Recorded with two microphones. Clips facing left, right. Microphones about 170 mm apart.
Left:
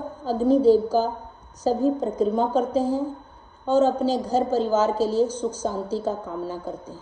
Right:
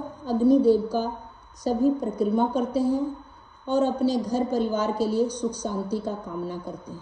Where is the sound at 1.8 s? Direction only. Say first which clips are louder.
Right 2 dB; 10° right (ahead or behind).